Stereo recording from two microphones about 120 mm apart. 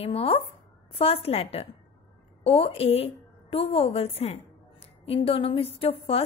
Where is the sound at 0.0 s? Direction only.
55° left (ahead or behind).